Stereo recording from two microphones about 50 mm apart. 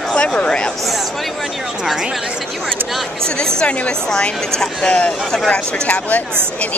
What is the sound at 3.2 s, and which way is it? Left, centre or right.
Speech, centre.